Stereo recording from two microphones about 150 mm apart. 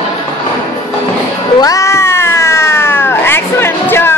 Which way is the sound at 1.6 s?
20° left (ahead or behind).